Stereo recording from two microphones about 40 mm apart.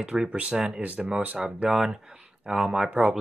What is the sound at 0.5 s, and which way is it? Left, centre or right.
Speech, centre.